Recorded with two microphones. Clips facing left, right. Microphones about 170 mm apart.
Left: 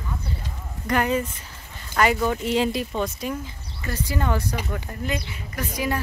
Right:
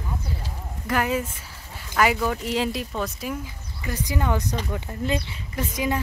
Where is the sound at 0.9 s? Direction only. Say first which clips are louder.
Left 2 dB; 5° right (ahead or behind).